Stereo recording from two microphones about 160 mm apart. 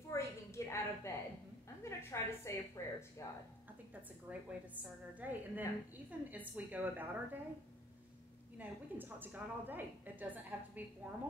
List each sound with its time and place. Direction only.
0.1 s a sound: 20° left (ahead or behind)
4.3 s a woman's voice: 10° right (ahead or behind)
8.5 s a woman's voice: 10° right (ahead or behind)